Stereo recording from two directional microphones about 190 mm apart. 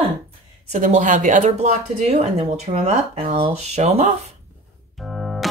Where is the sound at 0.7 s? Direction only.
40° right (ahead or behind).